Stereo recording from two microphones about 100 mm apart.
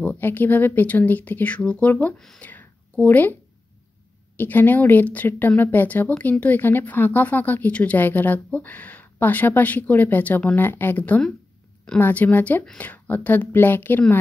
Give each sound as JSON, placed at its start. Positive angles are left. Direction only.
{"t": 0.0, "sound": "a woman's voice", "side_deg": 15}
{"t": 2.1, "sound": "speech", "side_deg": 5}
{"t": 2.4, "sound": "a sound", "side_deg": 15}
{"t": 4.4, "sound": "a woman's voice", "side_deg": 20}